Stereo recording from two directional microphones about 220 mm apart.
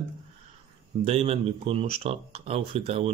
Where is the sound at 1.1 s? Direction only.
30° right (ahead or behind).